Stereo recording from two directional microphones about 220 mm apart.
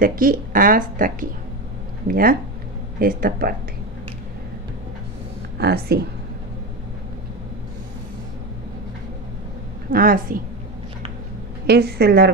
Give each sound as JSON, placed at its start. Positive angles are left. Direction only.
{"t": 0.0, "sound": "speech", "side_deg": -40}
{"t": 5.6, "sound": "a woman's voice", "side_deg": -45}
{"t": 9.9, "sound": "speech", "side_deg": -40}
{"t": 11.6, "sound": "a woman's voice", "side_deg": -45}